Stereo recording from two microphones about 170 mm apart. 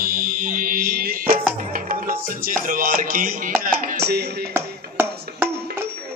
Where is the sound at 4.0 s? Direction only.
70° right (ahead or behind).